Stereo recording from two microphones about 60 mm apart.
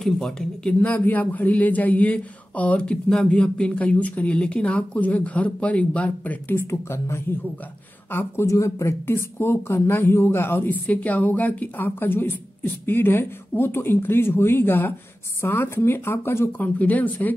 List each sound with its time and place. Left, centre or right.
0.0 s speech: centre
0.8 s speech: left
2.9 s speech: centre
6.5 s speech: left
8.1 s speech: left
8.5 s speech: left
9.0 s speech: left
16.5 s speech: left